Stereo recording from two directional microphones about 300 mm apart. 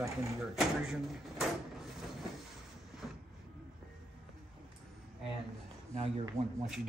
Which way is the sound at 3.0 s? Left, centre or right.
Centre.